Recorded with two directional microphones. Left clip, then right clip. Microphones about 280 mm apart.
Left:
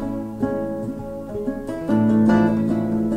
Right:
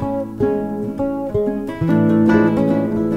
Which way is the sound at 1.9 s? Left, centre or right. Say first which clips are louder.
Right 4 dB; right.